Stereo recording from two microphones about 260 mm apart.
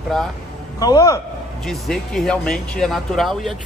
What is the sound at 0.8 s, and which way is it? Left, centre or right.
Speech, centre.